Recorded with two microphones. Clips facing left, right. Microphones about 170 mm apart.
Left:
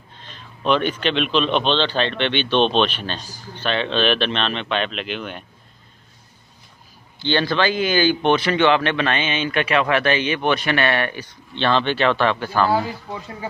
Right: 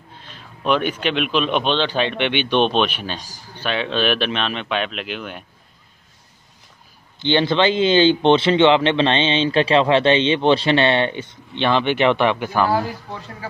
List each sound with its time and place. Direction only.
0.2 s speech: 10° right (ahead or behind)
7.2 s a man's voice: 20° right (ahead or behind)